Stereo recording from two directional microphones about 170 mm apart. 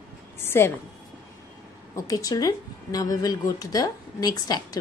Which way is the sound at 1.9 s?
20° left (ahead or behind).